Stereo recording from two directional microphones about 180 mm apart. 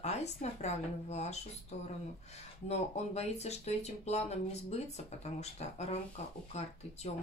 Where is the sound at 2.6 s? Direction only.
35° left (ahead or behind).